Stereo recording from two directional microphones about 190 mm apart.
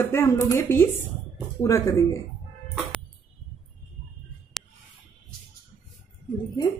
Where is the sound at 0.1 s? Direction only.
15° left (ahead or behind).